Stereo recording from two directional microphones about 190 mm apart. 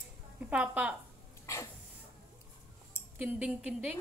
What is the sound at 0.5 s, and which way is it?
Speech, 5° right (ahead or behind).